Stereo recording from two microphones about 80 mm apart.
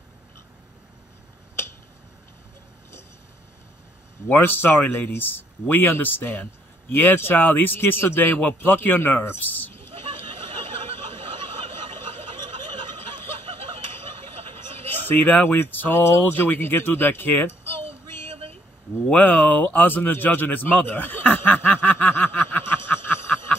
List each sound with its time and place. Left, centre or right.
4.3 s speech: left
15.0 s speech: left